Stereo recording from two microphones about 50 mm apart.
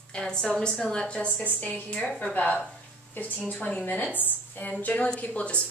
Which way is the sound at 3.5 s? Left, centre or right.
Left.